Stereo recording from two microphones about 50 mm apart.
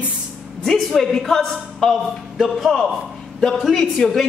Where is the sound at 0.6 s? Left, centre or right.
Centre.